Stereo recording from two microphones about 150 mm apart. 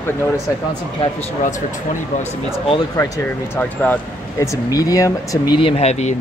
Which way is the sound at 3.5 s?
10° left (ahead or behind).